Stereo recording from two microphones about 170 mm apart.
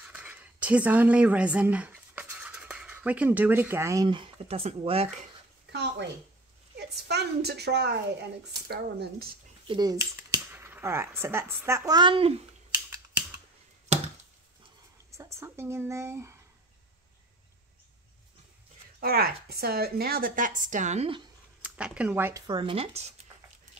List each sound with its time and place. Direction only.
0.0 s speech: 10° right (ahead or behind); by 5.0 s 35° right (ahead or behind)
5.7 s a sound: 80° right
6.8 s a woman's voice: 75° right (ahead or behind)
8.6 s a woman's voice: 65° right (ahead or behind)
9.7 s speech: 25° right (ahead or behind)
12.7 s scissors: 20° right (ahead or behind)
15.1 s speech: 15° right (ahead or behind)
18.9 s a woman's voice: 65° right (ahead or behind); by 21.2 s 40° right (ahead or behind)
21.5 s speech: 5° right (ahead or behind)
22.5 s speech: 30° right (ahead or behind)